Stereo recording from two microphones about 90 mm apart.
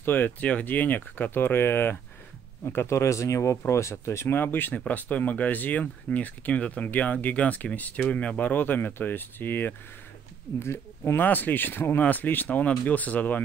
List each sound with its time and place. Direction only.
0.0 s speech: 20° left (ahead or behind)